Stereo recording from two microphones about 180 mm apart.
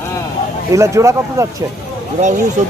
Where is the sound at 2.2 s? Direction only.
40° right (ahead or behind).